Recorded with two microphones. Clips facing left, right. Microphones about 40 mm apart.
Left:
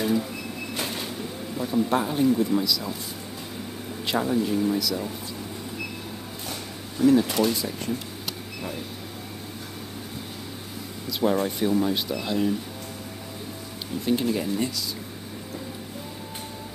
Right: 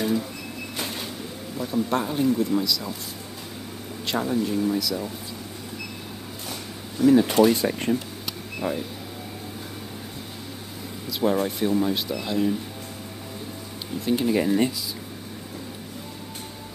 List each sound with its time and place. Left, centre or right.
0.0 s a sound: centre
0.7 s vehicle: centre
1.6 s speech: centre
4.0 s speech: centre
7.2 s speech: centre
7.5 s speech: right
11.1 s speech: centre
14.0 s speech: centre
14.3 s speech: right